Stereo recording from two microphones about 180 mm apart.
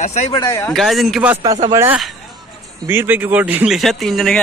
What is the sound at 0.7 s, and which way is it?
Speech, centre (ahead or behind).